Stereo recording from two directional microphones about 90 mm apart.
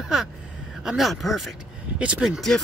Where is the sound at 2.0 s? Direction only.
10° right (ahead or behind).